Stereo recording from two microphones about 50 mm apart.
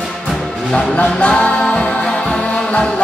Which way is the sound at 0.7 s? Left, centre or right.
Left.